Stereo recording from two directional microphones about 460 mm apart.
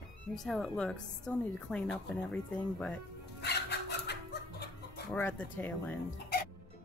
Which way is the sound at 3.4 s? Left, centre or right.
Left.